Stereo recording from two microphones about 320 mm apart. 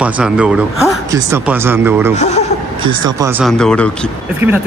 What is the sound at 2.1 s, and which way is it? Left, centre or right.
Speech, left.